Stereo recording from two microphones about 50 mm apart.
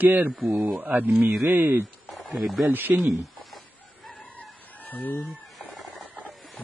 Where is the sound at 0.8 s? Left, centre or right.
Right.